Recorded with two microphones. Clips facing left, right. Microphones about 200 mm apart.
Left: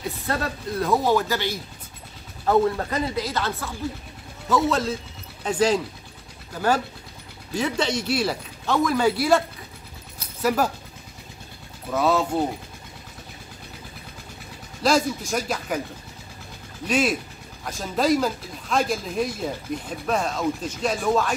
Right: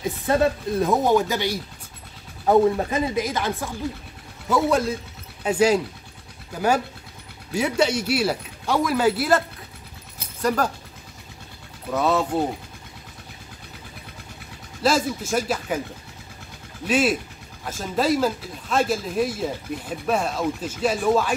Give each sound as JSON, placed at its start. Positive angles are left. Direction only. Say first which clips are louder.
{"t": 0.3, "sound": "speech", "louder": "right 8 dB", "side_deg": -20}
{"t": 7.5, "sound": "speech", "louder": "right 3 dB", "side_deg": -10}
{"t": 10.4, "sound": "speech", "louder": "even", "side_deg": 5}
{"t": 11.9, "sound": "speech", "louder": "even", "side_deg": 0}
{"t": 14.8, "sound": "speech", "louder": "even", "side_deg": -5}
{"t": 16.8, "sound": "speech", "louder": "right 2 dB", "side_deg": -5}